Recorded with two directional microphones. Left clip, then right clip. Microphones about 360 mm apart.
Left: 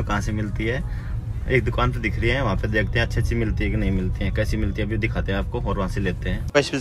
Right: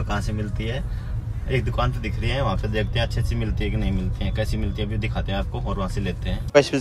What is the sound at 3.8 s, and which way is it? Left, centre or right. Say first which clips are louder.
Speech: left 3 dB; centre.